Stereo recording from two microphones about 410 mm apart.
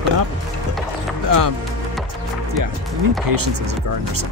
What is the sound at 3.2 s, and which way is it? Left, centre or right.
Speech, right.